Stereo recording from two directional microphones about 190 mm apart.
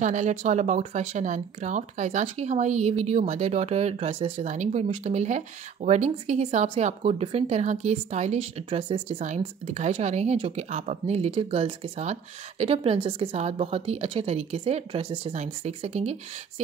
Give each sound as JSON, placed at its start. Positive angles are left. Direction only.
{"t": 0.0, "sound": "speech", "side_deg": -40}